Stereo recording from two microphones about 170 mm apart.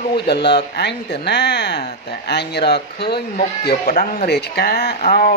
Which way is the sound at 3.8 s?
50° left (ahead or behind).